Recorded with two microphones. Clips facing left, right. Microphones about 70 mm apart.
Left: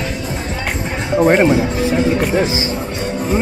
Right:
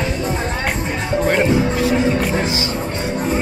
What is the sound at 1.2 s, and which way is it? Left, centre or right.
Speech, left.